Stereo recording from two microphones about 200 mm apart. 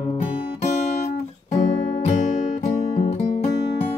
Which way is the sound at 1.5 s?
35° left (ahead or behind).